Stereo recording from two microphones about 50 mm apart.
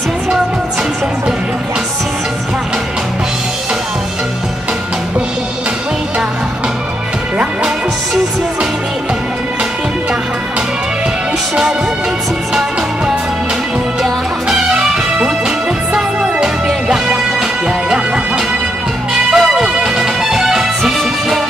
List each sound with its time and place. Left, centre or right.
12.5 s music: centre
14.5 s music: centre